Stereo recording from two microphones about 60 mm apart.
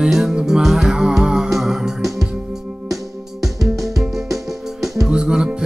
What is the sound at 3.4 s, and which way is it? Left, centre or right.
Music, centre.